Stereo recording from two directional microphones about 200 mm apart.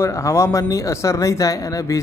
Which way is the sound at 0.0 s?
15° left (ahead or behind).